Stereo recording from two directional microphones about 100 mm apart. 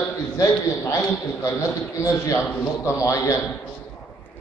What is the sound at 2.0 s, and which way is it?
A man's voice, 30° left (ahead or behind).